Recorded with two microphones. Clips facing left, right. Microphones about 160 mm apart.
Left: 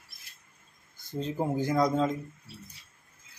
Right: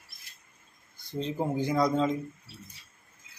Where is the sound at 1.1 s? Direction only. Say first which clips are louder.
Even; 5° left (ahead or behind).